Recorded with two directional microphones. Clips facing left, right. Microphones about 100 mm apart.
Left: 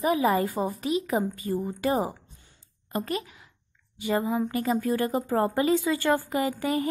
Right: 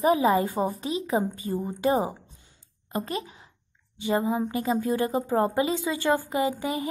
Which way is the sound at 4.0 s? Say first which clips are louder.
Right 1 dB; 20° right (ahead or behind).